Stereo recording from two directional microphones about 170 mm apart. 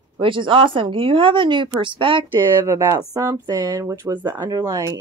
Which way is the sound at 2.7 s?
15° right (ahead or behind).